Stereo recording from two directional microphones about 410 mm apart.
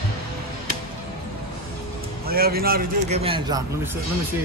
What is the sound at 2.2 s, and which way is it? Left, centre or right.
A man's voice, right.